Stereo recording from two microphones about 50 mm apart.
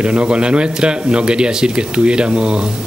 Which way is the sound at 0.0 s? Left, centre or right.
Right.